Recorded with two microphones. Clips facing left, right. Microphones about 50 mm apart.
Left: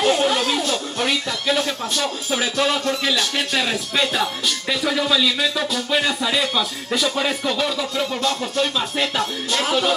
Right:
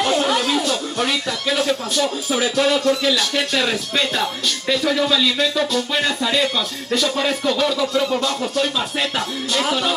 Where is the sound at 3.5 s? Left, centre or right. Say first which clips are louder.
Right 1 dB; centre.